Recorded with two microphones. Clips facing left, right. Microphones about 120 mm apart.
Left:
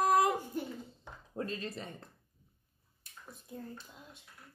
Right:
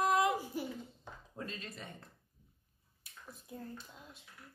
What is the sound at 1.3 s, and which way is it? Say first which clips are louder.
Speech: left 7 dB; 35° left (ahead or behind).